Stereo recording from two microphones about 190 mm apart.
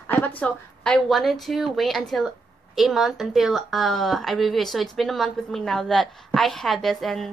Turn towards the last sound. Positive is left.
turn(degrees=0)  # may be behind; listen again after turning